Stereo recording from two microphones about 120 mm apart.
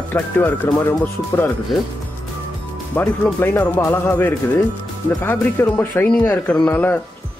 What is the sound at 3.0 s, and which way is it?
Speech, 15° left (ahead or behind).